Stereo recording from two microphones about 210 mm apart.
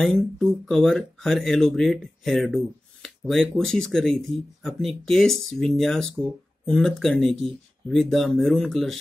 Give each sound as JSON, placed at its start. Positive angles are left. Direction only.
{"t": 0.0, "sound": "speech", "side_deg": 0}